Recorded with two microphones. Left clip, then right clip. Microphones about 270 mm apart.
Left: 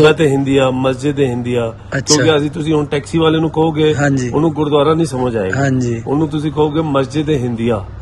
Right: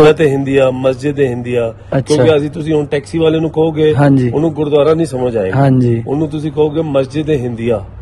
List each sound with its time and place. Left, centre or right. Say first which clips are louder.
0.1 s a man's voice: right 2 dB; centre
3.9 s a man's voice: right 4 dB; centre
4.6 s a man's voice: right 3 dB; centre
5.6 s a man's voice: right 4 dB; centre
6.6 s a man's voice: right 2 dB; centre